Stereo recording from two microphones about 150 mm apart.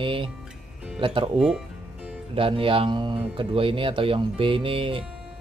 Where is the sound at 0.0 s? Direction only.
35° right (ahead or behind).